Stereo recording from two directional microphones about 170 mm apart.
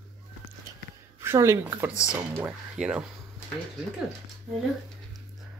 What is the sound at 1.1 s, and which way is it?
Speech, 15° right (ahead or behind).